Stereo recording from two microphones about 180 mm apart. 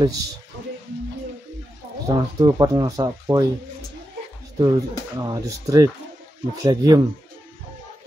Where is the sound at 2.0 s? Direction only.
20° right (ahead or behind).